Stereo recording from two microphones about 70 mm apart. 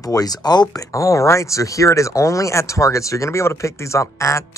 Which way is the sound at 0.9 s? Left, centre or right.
Left.